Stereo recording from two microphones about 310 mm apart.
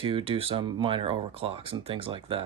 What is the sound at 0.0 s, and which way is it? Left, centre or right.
Speech, centre.